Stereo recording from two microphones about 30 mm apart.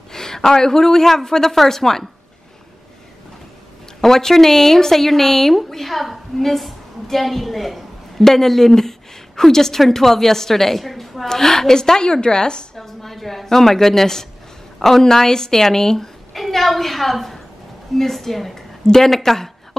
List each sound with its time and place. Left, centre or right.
0.1 s a woman's voice: centre
4.0 s a woman's voice: centre
8.2 s a woman's voice: centre
11.2 s a woman's voice: centre
12.7 s a woman's voice: centre
16.3 s a woman's voice: centre